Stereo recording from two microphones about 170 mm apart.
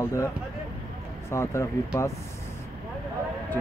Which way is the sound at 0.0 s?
15° left (ahead or behind).